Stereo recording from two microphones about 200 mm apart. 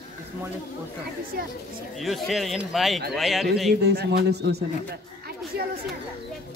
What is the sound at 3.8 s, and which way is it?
A man's voice, 55° right (ahead or behind).